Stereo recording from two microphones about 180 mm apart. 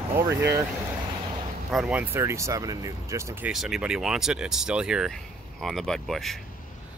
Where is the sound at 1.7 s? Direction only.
5° right (ahead or behind).